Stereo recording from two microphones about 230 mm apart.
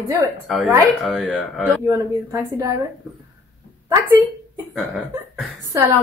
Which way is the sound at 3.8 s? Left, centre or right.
Centre.